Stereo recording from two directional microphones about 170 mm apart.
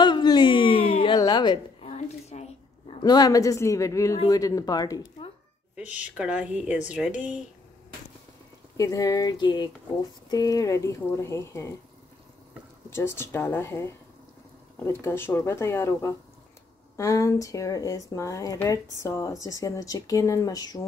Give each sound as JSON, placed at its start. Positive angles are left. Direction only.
{"t": 0.0, "sound": "a sound", "side_deg": 25}
{"t": 1.9, "sound": "a sound", "side_deg": 40}
{"t": 3.0, "sound": "a woman's voice", "side_deg": 25}
{"t": 5.8, "sound": "speech", "side_deg": -5}
{"t": 8.7, "sound": "a woman's voice", "side_deg": 20}
{"t": 12.9, "sound": "a woman's voice", "side_deg": 15}